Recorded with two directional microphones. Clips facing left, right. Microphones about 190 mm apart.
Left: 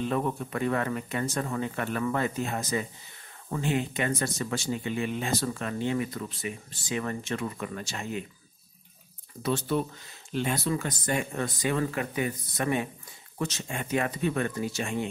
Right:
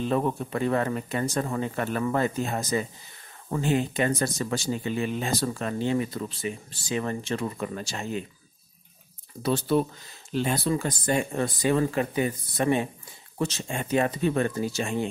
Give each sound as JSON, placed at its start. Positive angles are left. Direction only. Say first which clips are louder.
{"t": 0.1, "sound": "speech", "louder": "right 3 dB", "side_deg": -30}
{"t": 9.4, "sound": "speech", "louder": "right 4 dB", "side_deg": -35}